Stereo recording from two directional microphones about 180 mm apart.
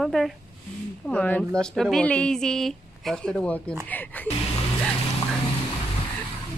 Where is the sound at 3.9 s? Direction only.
10° left (ahead or behind).